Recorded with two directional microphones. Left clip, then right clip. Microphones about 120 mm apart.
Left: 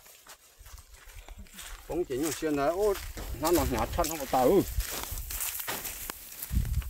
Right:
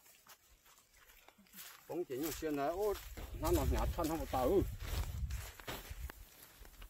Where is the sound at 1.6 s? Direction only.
30° right (ahead or behind).